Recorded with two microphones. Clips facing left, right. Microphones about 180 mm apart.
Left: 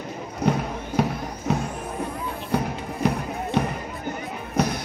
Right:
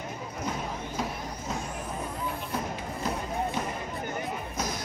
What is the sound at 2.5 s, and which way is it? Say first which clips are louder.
Music: left 7 dB; 70° left (ahead or behind).